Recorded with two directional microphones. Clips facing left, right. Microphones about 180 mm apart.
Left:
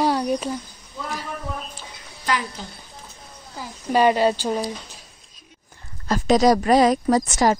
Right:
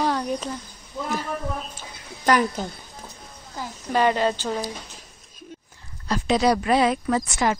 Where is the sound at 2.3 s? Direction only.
45° right (ahead or behind).